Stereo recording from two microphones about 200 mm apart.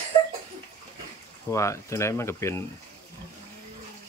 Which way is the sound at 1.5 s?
15° left (ahead or behind).